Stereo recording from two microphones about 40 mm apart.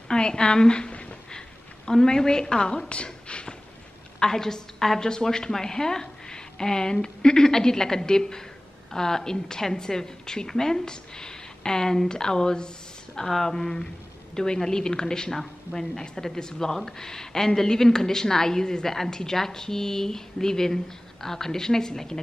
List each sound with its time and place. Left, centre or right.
0.1 s a sound: left
1.9 s a woman's voice: centre
4.2 s a woman's voice: centre